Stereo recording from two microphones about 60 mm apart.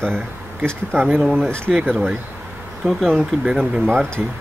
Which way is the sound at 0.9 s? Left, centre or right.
Right.